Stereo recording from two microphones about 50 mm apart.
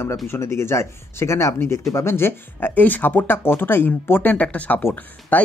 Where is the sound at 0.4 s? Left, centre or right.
Left.